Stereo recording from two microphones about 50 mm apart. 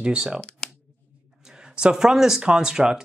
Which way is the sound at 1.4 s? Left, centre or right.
Centre.